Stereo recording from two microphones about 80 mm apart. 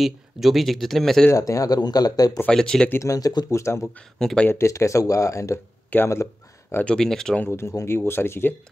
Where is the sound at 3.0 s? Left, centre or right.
Left.